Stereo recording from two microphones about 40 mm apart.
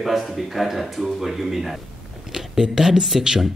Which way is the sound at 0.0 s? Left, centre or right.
Centre.